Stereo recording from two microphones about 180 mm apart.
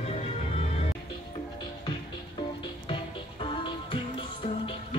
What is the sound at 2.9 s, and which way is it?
Music, 25° left (ahead or behind).